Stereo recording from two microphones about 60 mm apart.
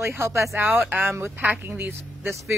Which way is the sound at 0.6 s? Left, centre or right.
Right.